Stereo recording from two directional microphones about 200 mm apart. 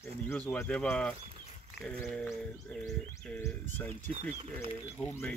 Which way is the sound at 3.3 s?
10° left (ahead or behind).